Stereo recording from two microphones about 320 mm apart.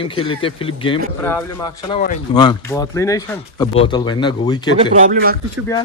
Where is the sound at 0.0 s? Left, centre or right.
Centre.